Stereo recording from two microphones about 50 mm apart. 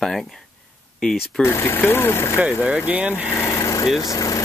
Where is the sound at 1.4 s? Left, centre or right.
Left.